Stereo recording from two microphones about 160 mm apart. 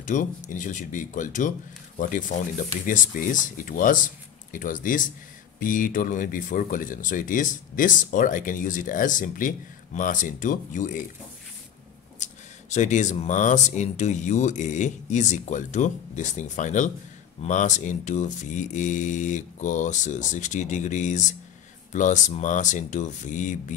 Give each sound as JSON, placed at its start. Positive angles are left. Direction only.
{"t": 0.0, "sound": "speech", "side_deg": 55}
{"t": 12.2, "sound": "speech", "side_deg": 50}